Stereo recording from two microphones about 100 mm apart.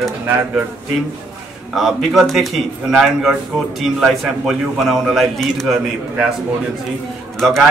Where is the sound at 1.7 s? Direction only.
Centre (ahead or behind).